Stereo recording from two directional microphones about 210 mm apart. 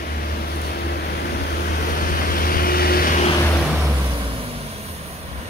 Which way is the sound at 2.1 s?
45° left (ahead or behind).